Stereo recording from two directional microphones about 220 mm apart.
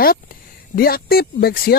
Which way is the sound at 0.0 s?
40° left (ahead or behind).